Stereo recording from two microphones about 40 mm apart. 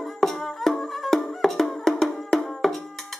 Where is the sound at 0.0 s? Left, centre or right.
Centre.